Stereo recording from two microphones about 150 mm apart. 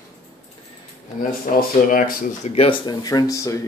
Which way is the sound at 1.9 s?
70° left (ahead or behind).